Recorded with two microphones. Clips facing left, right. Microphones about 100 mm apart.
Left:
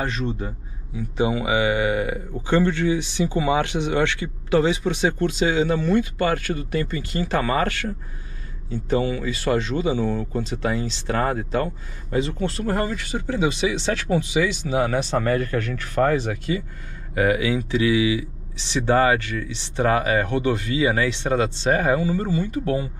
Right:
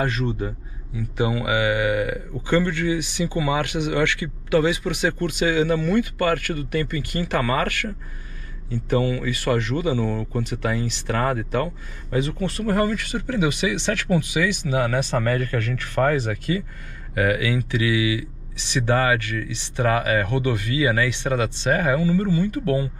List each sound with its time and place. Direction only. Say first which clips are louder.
0.0 s speech: right 2 dB; 25° left (ahead or behind)